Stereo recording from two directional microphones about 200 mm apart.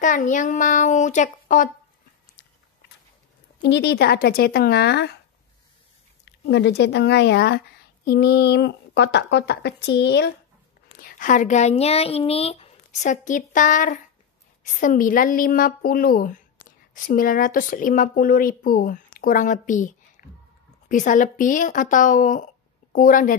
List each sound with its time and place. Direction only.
0.0 s a child's voice: 40° left (ahead or behind)
3.6 s a woman's voice: 60° left (ahead or behind)
6.2 s speech: 60° left (ahead or behind)
11.0 s a woman's voice: 40° left (ahead or behind)
20.9 s a child's voice: 40° left (ahead or behind)